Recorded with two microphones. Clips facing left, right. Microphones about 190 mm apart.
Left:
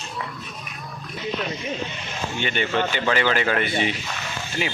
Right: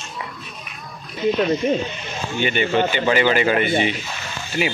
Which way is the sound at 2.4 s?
5° right (ahead or behind).